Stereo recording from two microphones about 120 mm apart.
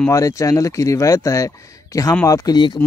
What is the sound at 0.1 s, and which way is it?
Speech, 25° left (ahead or behind).